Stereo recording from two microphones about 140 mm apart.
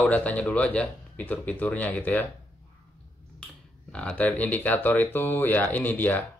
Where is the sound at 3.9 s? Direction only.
10° left (ahead or behind).